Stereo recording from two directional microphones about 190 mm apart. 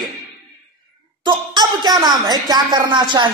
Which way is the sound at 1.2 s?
20° right (ahead or behind).